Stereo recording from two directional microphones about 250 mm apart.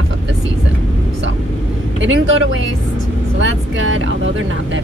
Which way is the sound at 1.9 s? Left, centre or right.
Right.